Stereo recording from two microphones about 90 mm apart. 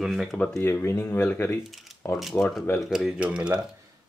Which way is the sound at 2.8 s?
5° right (ahead or behind).